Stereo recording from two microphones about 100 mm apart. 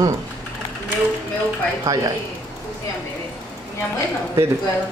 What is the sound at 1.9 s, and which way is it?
Speech, 35° right (ahead or behind).